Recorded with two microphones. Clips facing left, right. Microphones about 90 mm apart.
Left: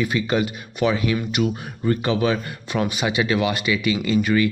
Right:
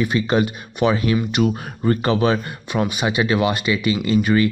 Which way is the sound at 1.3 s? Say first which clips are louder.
Right 3 dB; 40° right (ahead or behind).